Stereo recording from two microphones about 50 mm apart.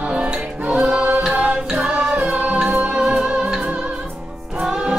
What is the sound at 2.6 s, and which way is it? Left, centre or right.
Music, centre.